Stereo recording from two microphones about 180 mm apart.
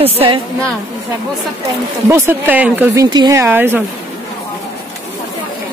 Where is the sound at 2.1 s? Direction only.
10° right (ahead or behind).